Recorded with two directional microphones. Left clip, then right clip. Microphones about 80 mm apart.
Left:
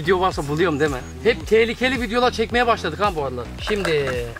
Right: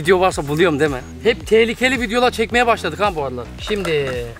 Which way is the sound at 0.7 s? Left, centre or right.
Centre.